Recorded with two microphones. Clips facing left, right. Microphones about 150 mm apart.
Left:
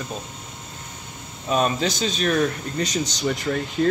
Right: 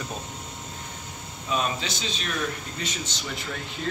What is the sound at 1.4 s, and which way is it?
Speech, 45° left (ahead or behind).